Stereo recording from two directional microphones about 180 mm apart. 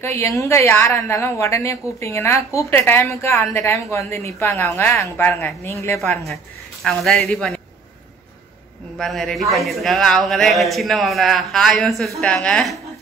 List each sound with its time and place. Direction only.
0.0 s a woman's voice: 15° left (ahead or behind)
5.9 s speech: centre (ahead or behind)
8.9 s speech: centre (ahead or behind)